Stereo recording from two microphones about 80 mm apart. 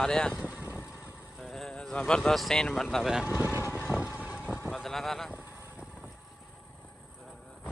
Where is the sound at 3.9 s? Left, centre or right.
Centre.